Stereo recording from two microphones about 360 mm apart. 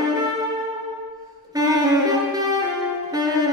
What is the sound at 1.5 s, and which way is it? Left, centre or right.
Music, centre.